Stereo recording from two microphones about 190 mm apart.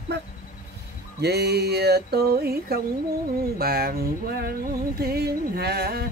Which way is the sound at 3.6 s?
55° right (ahead or behind).